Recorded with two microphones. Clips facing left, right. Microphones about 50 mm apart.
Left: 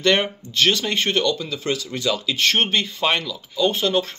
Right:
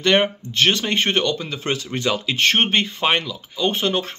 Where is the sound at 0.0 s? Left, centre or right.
Centre.